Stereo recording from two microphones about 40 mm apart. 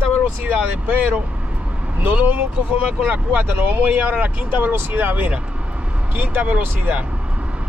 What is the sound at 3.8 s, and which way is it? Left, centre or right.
Speech, right.